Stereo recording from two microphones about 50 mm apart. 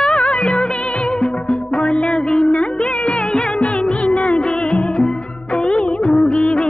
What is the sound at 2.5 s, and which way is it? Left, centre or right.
Music, left.